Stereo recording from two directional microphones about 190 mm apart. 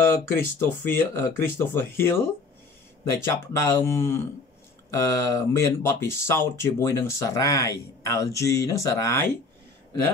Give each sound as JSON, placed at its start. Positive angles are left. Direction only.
{"t": 0.0, "sound": "speech", "side_deg": 15}